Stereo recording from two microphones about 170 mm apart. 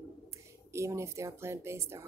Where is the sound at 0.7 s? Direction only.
15° right (ahead or behind).